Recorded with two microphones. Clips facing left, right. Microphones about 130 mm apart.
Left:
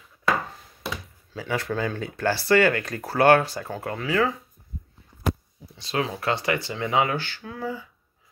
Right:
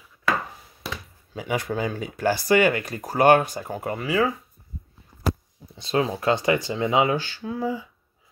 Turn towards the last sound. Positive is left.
turn(degrees=-20)  # may be behind; listen again after turning